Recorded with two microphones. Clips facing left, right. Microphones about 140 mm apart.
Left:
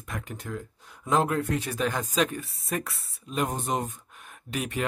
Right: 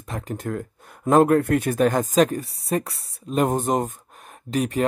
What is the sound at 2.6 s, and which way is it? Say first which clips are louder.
Speech: right 7 dB; 30° right (ahead or behind).